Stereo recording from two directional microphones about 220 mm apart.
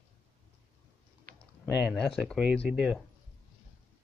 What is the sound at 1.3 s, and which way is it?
Typing, 40° right (ahead or behind).